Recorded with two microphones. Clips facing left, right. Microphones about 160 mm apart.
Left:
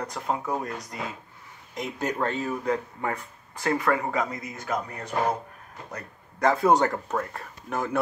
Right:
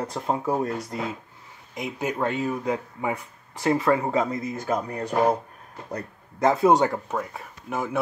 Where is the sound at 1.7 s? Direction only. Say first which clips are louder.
Right 1 dB; 5° right (ahead or behind).